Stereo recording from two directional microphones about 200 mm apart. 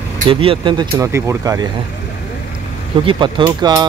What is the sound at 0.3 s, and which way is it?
Speech, 25° right (ahead or behind).